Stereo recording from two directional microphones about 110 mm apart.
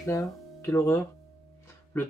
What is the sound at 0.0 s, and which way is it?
Speech, 30° left (ahead or behind).